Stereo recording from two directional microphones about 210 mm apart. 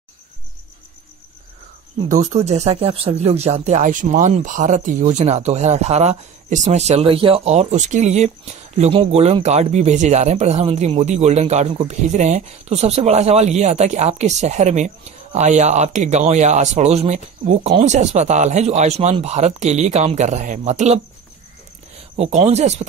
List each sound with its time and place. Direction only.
2.0 s speech: 35° right (ahead or behind)
22.1 s speech: 30° right (ahead or behind)